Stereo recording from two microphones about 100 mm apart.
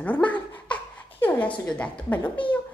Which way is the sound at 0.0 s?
15° left (ahead or behind).